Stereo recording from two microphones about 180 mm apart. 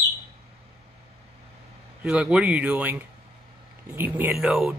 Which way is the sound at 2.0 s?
5° right (ahead or behind).